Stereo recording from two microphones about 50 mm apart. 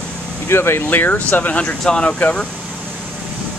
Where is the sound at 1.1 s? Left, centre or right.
Left.